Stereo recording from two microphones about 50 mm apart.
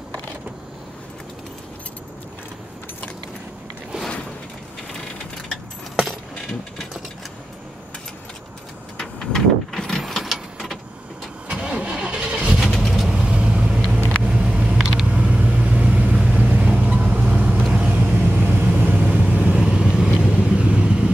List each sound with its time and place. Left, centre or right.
5.5 s keys jangling: centre
8.9 s vehicle: centre
9.8 s printer: centre
10.0 s a sound: centre
11.4 s vehicle: centre
12.6 s vehicle: centre
13.1 s vehicle: right
13.7 s vehicle: centre
14.2 s vehicle: centre; by 18.7 s right
18.7 s vehicle: right
19.5 s vehicle: centre